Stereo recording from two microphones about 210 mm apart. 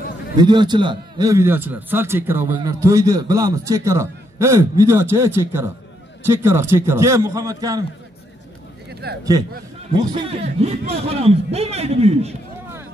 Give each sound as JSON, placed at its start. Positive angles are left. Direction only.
{"t": 0.4, "sound": "a man's voice", "side_deg": -20}
{"t": 9.1, "sound": "a man's voice", "side_deg": -50}
{"t": 9.9, "sound": "a man's voice", "side_deg": -25}